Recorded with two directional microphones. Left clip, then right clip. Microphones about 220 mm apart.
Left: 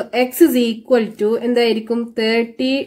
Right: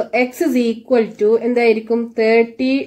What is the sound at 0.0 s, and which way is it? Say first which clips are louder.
A woman's voice: left 3 dB; 50° left (ahead or behind).